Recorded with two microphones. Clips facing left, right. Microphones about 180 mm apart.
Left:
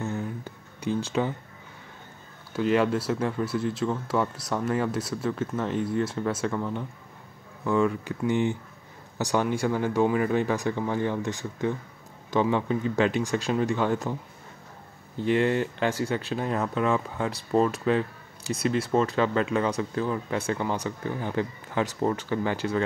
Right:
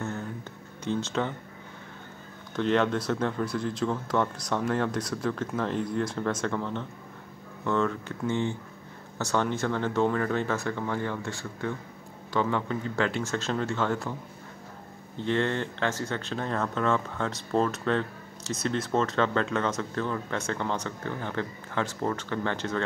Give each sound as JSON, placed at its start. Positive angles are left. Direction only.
{"t": 0.0, "sound": "a sound", "side_deg": 15}
{"t": 2.5, "sound": "speech", "side_deg": 5}
{"t": 15.1, "sound": "speech", "side_deg": 10}